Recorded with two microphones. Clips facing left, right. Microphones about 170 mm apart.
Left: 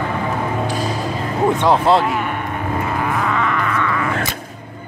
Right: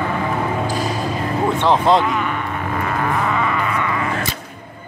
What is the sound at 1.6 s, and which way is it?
Speech, 5° left (ahead or behind).